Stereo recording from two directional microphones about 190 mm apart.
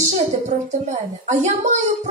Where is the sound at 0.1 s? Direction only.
40° right (ahead or behind).